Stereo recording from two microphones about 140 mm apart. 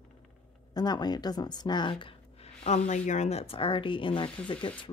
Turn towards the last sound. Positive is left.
turn(degrees=35)  # may be behind; listen again after turning